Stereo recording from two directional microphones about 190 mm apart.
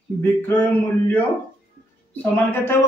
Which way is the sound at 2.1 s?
10° left (ahead or behind).